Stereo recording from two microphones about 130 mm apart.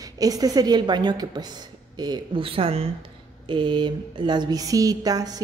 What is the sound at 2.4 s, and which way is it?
A woman's voice, 45° right (ahead or behind).